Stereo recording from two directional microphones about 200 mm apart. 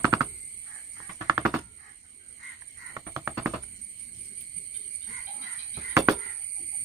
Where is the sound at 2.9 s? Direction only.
10° right (ahead or behind).